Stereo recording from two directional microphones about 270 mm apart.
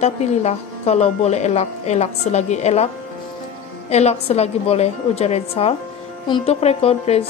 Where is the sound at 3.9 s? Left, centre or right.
Left.